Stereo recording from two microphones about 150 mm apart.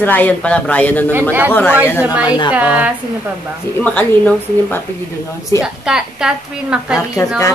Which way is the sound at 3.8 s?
10° left (ahead or behind).